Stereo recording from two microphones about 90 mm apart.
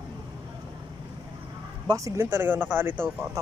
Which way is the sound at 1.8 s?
35° right (ahead or behind).